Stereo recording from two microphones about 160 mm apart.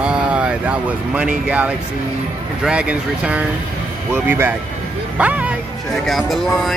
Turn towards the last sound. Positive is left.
turn(degrees=0)  # may be behind; listen again after turning